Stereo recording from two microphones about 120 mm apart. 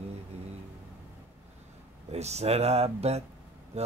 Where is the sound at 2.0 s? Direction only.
65° right (ahead or behind).